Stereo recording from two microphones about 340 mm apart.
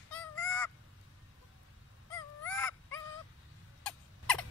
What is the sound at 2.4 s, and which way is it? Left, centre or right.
Dog, centre.